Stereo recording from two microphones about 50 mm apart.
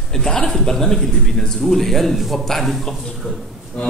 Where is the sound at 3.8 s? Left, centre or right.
Left.